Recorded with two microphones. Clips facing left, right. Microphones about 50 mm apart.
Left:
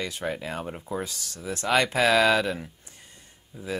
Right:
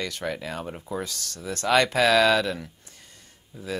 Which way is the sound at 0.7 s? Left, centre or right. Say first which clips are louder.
Even; centre.